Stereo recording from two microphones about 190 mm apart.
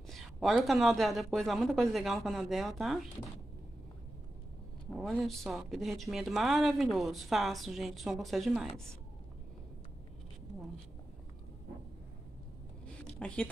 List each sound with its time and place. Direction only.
0.0 s speech: centre (ahead or behind)
4.9 s speech: centre (ahead or behind)
13.0 s a sound: 5° left (ahead or behind)